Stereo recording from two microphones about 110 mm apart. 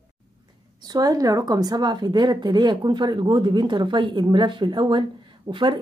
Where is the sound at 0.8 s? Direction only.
35° right (ahead or behind).